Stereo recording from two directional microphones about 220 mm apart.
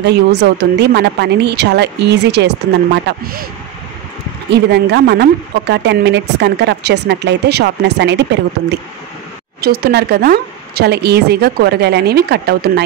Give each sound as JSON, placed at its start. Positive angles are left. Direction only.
{"t": 0.0, "sound": "speech", "side_deg": -50}
{"t": 4.5, "sound": "speech", "side_deg": -50}